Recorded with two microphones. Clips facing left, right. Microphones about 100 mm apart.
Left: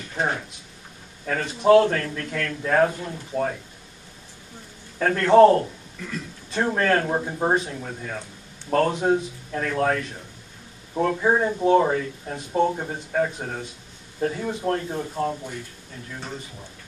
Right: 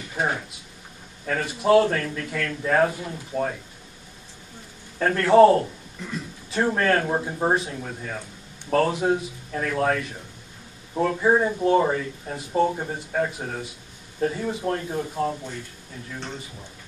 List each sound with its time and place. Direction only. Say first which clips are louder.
0.1 s a sound: even; 5° right (ahead or behind)
1.4 s a man's voice: left 2 dB; 5° right (ahead or behind)
4.9 s a man's voice: left 1 dB; centre (ahead or behind)
5.9 s a man's voice: even; 15° right (ahead or behind)
6.5 s a man's voice: even; centre (ahead or behind)